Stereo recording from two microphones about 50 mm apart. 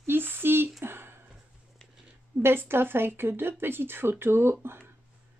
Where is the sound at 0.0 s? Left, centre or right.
Right.